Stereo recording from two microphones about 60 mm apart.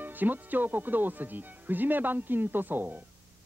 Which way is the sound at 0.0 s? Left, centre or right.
Right.